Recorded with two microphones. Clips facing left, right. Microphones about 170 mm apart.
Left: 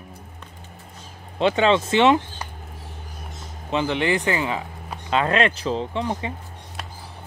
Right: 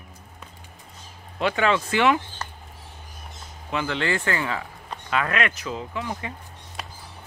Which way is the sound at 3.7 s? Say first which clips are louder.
Left 4 dB; 20° left (ahead or behind).